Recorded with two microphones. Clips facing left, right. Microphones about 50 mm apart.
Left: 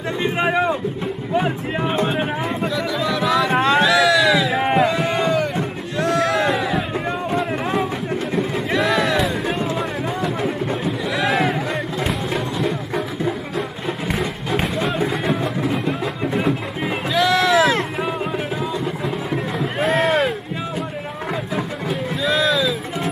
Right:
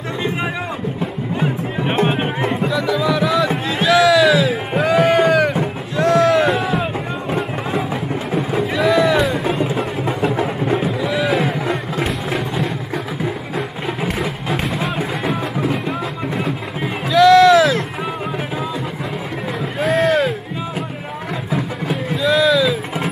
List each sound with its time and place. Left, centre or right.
0.2 s speech: left
2.0 s music: right
2.6 s a sound: centre
4.9 s a sound: right
5.9 s music: centre
8.4 s music: centre
11.1 s a sound: centre
12.1 s music: centre
19.6 s boat: centre
21.5 s vehicle: centre